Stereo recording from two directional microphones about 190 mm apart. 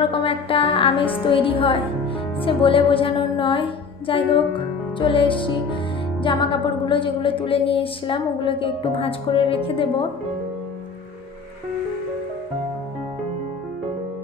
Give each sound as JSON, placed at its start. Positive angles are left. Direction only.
{"t": 0.0, "sound": "music", "side_deg": 30}
{"t": 2.4, "sound": "a woman's voice", "side_deg": 30}